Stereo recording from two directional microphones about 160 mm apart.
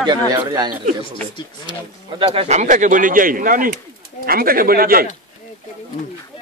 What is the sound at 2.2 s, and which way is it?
Speech, 35° right (ahead or behind).